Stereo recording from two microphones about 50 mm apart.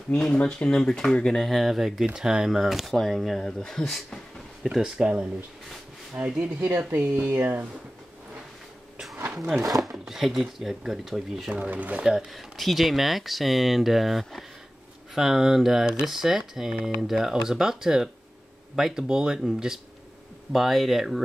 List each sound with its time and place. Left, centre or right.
0.1 s speech: centre
1.5 s speech: centre
4.6 s speech: centre
4.9 s speech: right
6.3 s speech: right
10.0 s speech: centre
11.4 s speech: right
11.7 s speech: right
12.0 s speech: centre
12.4 s speech: centre